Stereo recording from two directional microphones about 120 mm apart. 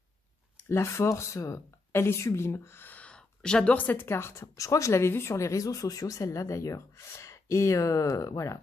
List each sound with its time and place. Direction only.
0.7 s a woman's voice: 20° left (ahead or behind)